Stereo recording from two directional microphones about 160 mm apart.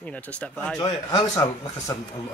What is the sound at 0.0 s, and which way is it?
Speech, 10° left (ahead or behind).